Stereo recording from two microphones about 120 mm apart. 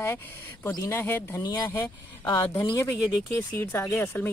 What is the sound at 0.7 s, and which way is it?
Speech, 25° left (ahead or behind).